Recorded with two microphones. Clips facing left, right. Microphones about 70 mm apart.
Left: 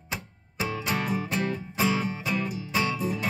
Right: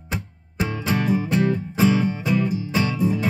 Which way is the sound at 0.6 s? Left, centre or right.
Right.